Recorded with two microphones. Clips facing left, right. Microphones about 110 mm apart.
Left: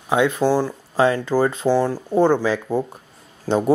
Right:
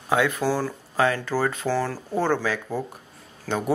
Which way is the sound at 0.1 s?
20° left (ahead or behind).